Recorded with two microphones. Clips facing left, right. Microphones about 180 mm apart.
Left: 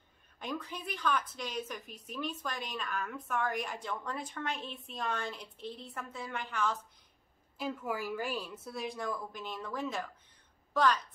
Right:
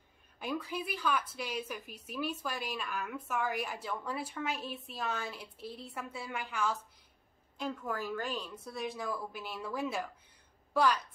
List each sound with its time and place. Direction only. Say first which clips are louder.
0.4 s speech: right 3 dB; 10° right (ahead or behind)
7.5 s a woman's voice: left 1 dB; 5° left (ahead or behind); by 11.0 s 10° right (ahead or behind)